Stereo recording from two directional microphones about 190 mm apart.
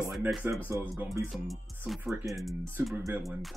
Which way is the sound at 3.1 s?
15° right (ahead or behind).